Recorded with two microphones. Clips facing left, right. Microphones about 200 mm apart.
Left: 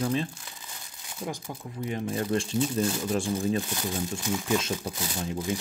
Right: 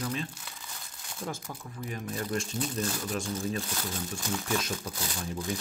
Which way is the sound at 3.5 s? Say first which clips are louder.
Left 5 dB; 15° left (ahead or behind).